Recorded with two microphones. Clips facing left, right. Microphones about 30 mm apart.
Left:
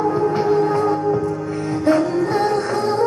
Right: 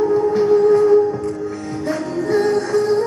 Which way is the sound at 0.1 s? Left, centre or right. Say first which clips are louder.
Right 3 dB; centre.